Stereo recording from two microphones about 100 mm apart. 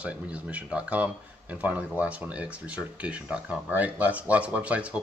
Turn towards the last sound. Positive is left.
turn(degrees=-15)  # may be behind; listen again after turning